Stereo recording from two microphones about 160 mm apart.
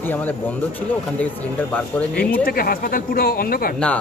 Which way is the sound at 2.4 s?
65° left (ahead or behind).